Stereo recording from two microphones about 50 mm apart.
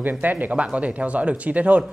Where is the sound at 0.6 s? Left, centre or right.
Right.